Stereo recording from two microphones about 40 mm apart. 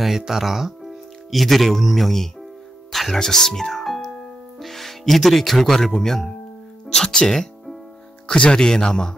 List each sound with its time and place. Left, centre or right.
0.3 s speech: centre
2.9 s music: centre
3.2 s speech: centre